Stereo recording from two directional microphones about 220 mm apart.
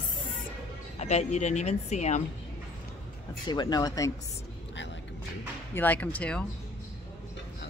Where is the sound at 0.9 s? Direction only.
30° left (ahead or behind).